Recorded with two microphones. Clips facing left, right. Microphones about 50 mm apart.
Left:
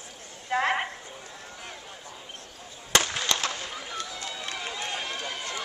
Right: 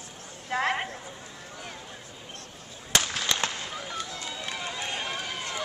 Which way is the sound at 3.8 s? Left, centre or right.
Centre.